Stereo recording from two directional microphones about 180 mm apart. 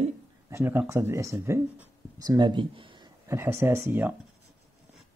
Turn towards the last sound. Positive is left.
turn(degrees=-10)  # may be behind; listen again after turning